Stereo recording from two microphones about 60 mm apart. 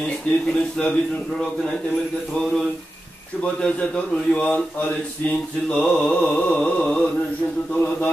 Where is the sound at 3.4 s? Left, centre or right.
Centre.